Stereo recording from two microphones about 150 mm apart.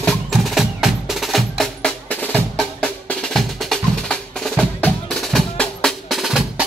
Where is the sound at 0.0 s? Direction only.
Centre (ahead or behind).